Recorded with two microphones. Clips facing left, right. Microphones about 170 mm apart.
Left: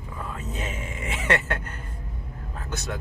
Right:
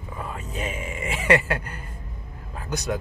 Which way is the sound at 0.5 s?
10° right (ahead or behind).